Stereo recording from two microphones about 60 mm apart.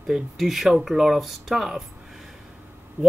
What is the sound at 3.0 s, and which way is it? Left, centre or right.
Speech, right.